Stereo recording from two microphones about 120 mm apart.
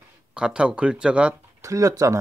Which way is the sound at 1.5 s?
25° right (ahead or behind).